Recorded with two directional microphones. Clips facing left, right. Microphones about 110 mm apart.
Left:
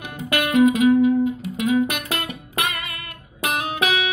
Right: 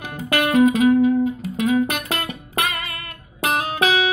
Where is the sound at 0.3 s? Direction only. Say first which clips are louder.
Right 1 dB; 35° right (ahead or behind).